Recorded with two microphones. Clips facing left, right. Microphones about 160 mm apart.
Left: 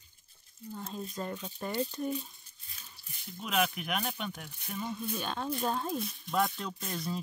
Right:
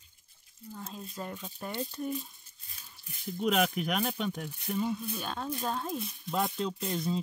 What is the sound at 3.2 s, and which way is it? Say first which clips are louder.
Speech: right 4 dB; 40° right (ahead or behind).